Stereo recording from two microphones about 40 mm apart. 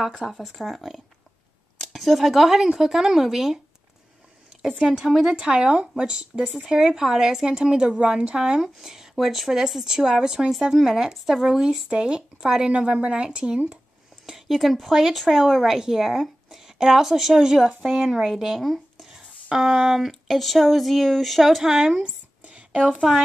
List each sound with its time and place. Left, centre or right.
0.2 s a woman's voice: centre
4.9 s a woman's voice: centre
5.3 s speech: right
6.5 s a woman's voice: centre
11.4 s speech: centre
14.3 s a woman's voice: centre
18.6 s a sound: centre
19.0 s a sound: centre
20.1 s speech: centre
21.6 s a woman's voice: centre
22.4 s a sound: right